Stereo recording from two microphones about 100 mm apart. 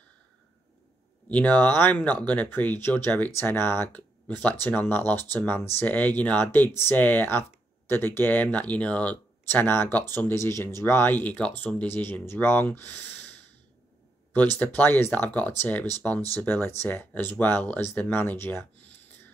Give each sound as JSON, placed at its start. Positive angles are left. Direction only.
{"t": 1.3, "sound": "speech", "side_deg": 15}
{"t": 14.3, "sound": "speech", "side_deg": 15}